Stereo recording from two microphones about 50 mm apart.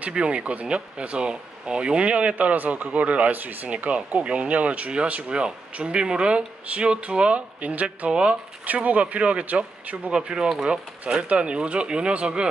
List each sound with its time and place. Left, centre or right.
0.0 s speech: right
8.1 s speech: centre
8.6 s speech: right